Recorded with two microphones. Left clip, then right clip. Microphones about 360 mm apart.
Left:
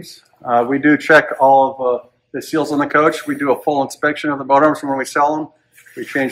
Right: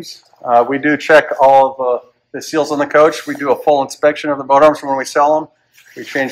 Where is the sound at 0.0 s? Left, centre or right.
Right.